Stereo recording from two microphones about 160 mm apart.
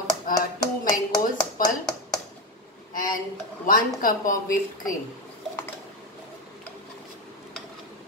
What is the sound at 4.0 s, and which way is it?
Speech, 60° left (ahead or behind).